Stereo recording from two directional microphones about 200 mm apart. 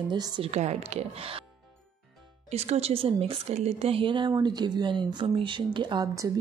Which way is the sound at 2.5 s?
30° right (ahead or behind).